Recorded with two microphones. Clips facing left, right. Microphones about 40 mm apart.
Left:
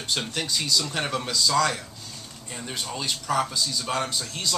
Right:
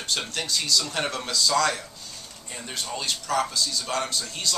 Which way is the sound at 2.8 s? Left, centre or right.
Centre.